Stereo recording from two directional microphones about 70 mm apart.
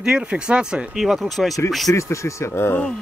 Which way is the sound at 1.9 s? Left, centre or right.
Left.